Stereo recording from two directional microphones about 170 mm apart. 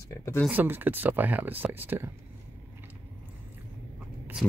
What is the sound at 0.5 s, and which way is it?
Speech, 10° right (ahead or behind).